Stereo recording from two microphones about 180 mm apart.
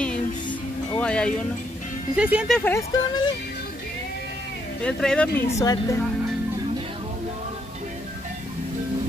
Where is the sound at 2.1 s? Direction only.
5° right (ahead or behind).